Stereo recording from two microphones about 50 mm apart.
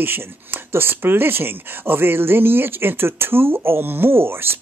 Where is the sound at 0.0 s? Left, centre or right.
Right.